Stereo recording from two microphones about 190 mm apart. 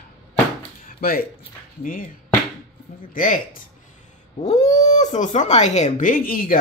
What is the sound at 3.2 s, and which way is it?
Speech, 45° left (ahead or behind).